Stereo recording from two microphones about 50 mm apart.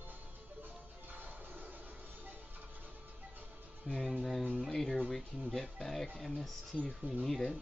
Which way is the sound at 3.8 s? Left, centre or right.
Centre.